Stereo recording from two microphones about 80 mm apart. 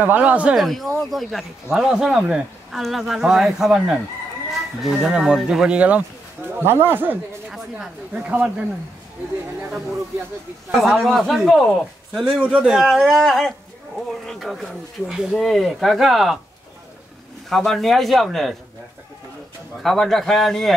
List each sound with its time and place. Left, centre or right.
0.0 s speech: right
0.6 s speech: centre
6.6 s speech: right
7.7 s speech: centre
10.8 s speech: centre
12.4 s speech: centre
17.5 s speech: centre
19.8 s speech: centre